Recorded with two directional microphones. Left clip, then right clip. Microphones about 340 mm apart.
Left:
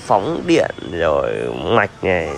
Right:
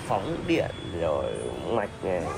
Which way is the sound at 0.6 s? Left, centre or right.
Left.